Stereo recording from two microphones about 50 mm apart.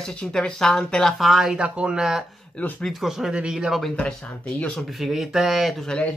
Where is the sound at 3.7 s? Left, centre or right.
Centre.